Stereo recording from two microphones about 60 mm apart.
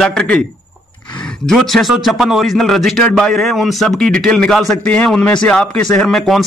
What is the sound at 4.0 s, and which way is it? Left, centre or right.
Speech, centre.